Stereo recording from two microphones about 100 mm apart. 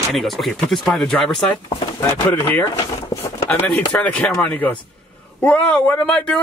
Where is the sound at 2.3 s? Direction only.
20° left (ahead or behind).